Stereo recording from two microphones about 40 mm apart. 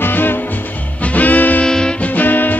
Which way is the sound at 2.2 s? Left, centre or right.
Left.